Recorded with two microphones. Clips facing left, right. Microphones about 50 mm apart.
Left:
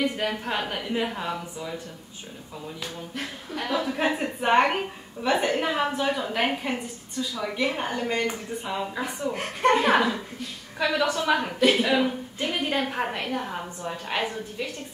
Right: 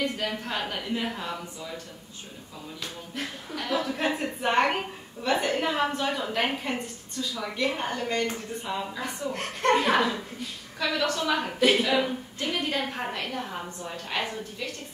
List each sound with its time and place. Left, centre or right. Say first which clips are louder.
0.0 s a woman's voice: left 3 dB; centre
3.5 s a woman's voice: left 2 dB; centre